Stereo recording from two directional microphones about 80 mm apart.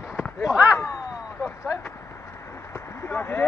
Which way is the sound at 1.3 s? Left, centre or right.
Left.